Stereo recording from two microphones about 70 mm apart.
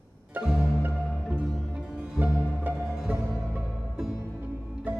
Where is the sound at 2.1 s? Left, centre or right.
Right.